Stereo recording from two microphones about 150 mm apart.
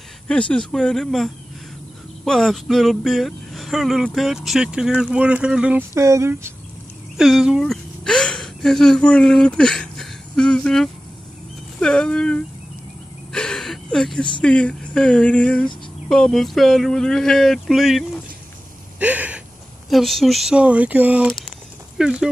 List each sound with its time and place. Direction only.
0.3 s speech: 5° left (ahead or behind)
5.9 s speech: 20° right (ahead or behind)
7.2 s speech: 5° right (ahead or behind)
13.3 s a sound: 5° left (ahead or behind)
14.4 s speech: 5° left (ahead or behind)
18.9 s gasp: 10° right (ahead or behind)
19.9 s speech: centre (ahead or behind)
21.3 s a sound: centre (ahead or behind)